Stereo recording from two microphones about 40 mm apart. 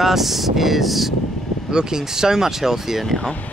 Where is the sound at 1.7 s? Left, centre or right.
Centre.